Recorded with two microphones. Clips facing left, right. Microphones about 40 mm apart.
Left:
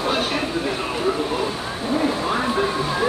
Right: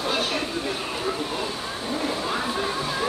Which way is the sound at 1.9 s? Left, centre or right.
Centre.